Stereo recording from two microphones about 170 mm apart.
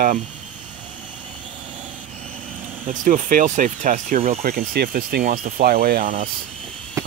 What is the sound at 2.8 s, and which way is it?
Speech, 50° right (ahead or behind).